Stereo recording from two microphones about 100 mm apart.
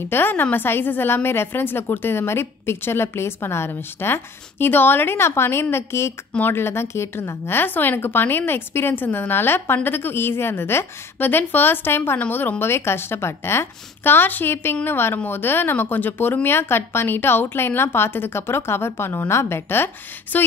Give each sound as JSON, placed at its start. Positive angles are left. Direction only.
{"t": 0.1, "sound": "a woman's voice", "side_deg": 20}